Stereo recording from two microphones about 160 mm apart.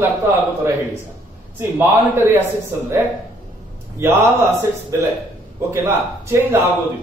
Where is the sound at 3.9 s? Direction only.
15° right (ahead or behind).